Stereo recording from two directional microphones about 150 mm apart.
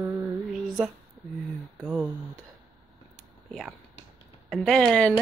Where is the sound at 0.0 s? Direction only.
20° right (ahead or behind).